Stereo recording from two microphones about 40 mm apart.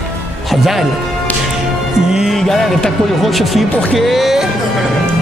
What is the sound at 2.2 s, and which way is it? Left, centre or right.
A man's voice, centre.